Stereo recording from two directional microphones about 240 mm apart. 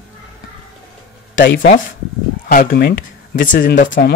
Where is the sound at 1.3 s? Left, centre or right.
Left.